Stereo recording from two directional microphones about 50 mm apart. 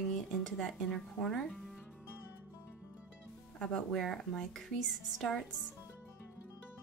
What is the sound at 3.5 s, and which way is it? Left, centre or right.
Speech, centre.